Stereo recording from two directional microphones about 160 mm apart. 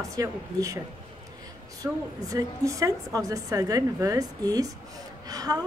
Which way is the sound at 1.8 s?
20° right (ahead or behind).